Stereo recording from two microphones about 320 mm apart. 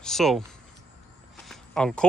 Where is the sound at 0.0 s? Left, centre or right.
Centre.